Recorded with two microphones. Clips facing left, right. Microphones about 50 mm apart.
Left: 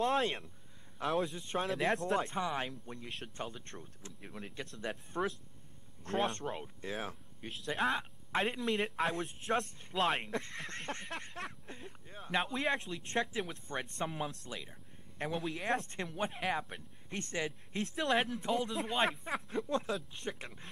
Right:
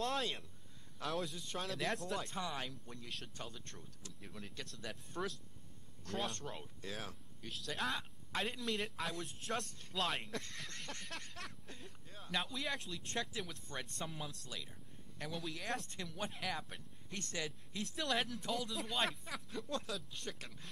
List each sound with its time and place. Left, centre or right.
0.2 s speech: left
0.9 s speech: left
8.3 s speech: left
9.4 s speech: left
10.3 s speech: left
10.6 s speech: left
13.4 s speech: centre
13.8 s speech: left
20.1 s speech: left